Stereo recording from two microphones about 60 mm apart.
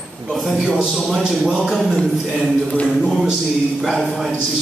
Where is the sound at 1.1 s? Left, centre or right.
Centre.